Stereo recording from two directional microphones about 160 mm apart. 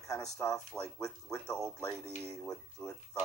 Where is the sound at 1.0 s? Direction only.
20° left (ahead or behind).